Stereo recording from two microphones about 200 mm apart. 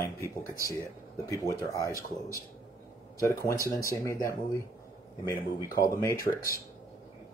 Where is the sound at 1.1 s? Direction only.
15° left (ahead or behind).